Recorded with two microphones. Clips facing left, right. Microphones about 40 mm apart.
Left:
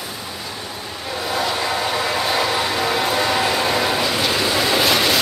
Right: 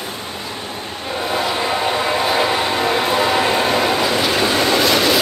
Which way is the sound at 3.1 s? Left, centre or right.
Centre.